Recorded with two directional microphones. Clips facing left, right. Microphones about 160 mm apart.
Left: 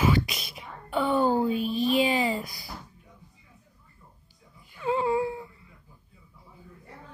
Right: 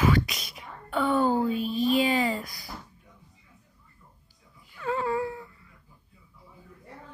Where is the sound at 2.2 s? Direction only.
25° left (ahead or behind).